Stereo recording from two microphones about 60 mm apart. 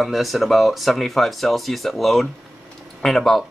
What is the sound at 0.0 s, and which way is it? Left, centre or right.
Speech, centre.